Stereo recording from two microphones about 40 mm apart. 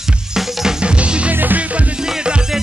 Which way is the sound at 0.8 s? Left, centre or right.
Right.